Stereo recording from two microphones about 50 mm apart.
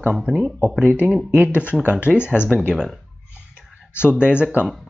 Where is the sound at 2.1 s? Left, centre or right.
Right.